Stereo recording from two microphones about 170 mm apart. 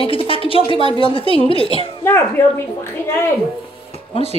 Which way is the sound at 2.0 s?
10° left (ahead or behind).